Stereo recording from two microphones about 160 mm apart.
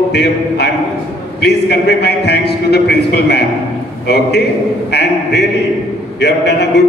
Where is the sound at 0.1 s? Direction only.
90° left.